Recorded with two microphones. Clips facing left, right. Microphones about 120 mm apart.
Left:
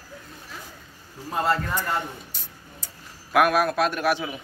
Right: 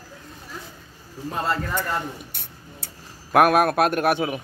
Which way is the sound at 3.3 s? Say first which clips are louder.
Right 3 dB; 50° right (ahead or behind).